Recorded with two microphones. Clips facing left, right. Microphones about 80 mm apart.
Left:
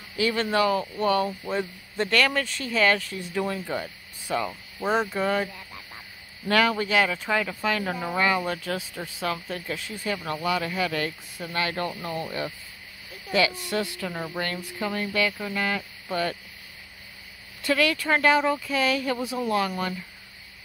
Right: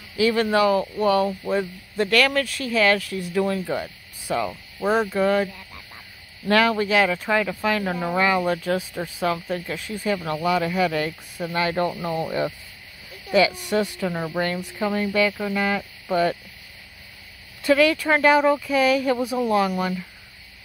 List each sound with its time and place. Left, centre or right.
0.4 s speech: centre
3.6 s speech: centre
4.7 s speech: centre
6.5 s speech: centre
17.6 s speech: centre